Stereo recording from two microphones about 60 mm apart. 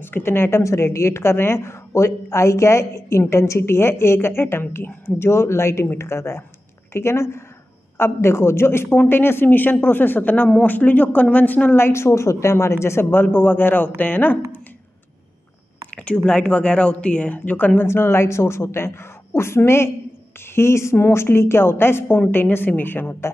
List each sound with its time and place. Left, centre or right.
0.0 s a woman's voice: left
11.8 s a man's voice: left
15.9 s speech: centre
17.8 s a woman's voice: left